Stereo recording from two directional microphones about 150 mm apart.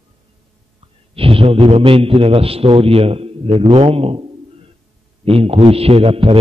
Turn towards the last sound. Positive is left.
turn(degrees=-40)  # may be behind; listen again after turning